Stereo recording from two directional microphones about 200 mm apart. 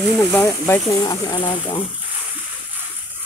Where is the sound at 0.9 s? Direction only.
20° left (ahead or behind).